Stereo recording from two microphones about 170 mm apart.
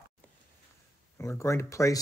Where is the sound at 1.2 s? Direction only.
20° left (ahead or behind).